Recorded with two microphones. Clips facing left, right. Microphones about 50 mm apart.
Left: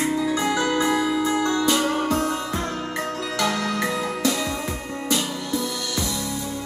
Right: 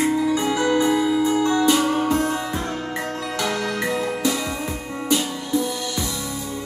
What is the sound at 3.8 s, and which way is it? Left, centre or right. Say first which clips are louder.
Music: right 1 dB; centre.